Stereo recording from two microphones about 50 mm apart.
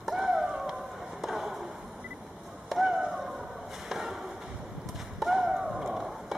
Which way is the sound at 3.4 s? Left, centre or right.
Centre.